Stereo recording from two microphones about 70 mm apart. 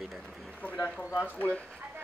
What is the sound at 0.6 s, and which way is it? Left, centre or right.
Speech, left.